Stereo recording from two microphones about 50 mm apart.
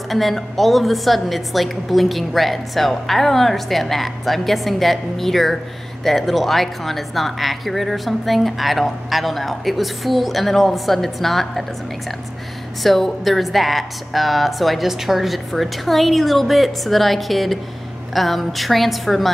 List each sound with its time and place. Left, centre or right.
0.1 s speech: centre
12.8 s speech: centre